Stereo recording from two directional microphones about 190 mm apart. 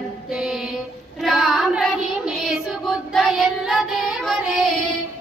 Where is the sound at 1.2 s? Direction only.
Centre (ahead or behind).